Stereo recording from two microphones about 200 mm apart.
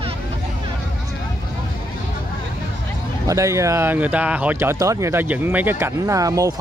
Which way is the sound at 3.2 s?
15° right (ahead or behind).